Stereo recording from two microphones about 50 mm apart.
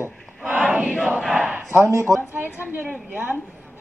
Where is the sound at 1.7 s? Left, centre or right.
Right.